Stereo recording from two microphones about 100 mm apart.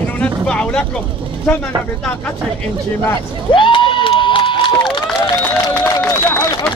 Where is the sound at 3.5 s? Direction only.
55° left (ahead or behind).